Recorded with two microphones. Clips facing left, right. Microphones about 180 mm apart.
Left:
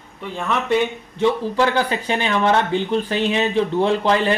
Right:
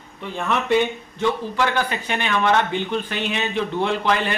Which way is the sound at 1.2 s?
30° left (ahead or behind).